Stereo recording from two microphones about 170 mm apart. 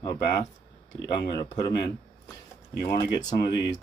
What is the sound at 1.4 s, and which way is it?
Speech, 25° left (ahead or behind).